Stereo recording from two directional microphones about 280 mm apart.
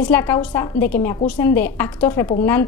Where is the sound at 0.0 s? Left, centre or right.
Centre.